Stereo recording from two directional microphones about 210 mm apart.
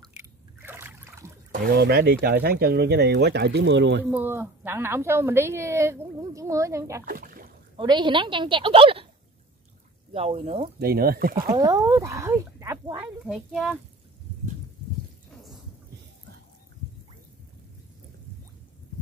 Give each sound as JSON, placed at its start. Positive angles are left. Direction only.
{"t": 0.0, "sound": "trickle", "side_deg": -10}
{"t": 1.5, "sound": "speech", "side_deg": -50}
{"t": 4.0, "sound": "a woman's voice", "side_deg": -10}
{"t": 7.1, "sound": "rowboat", "side_deg": -45}
{"t": 7.7, "sound": "a woman's voice", "side_deg": -20}
{"t": 10.1, "sound": "a woman's voice", "side_deg": -30}
{"t": 10.8, "sound": "speech", "side_deg": -45}
{"t": 11.5, "sound": "speech", "side_deg": -15}
{"t": 13.2, "sound": "speech", "side_deg": -5}